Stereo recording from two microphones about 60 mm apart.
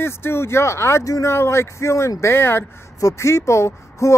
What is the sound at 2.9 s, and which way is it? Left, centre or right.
Speech, left.